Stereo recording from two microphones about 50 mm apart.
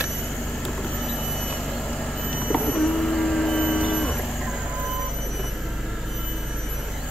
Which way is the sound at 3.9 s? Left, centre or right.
Centre.